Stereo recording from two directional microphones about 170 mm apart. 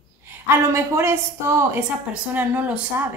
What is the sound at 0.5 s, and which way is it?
A woman's voice, 15° right (ahead or behind).